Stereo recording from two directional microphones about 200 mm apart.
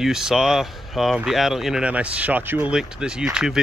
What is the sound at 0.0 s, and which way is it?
Speech, centre (ahead or behind).